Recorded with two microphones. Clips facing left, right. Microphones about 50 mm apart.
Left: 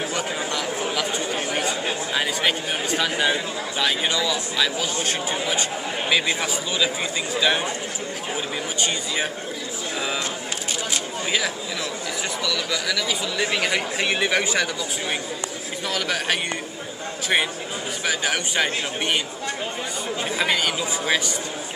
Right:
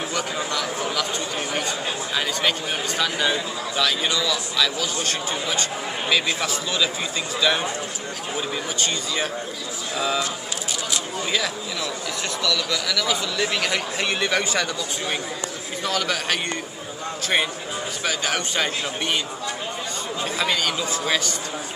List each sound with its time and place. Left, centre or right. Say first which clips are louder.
0.5 s a sound: even; centre
2.1 s speech: even; centre
8.8 s speech: left 1 dB; centre
12.4 s speech: right 2 dB; centre
18.0 s speech: left 1 dB; centre
20.3 s speech: left 1 dB; centre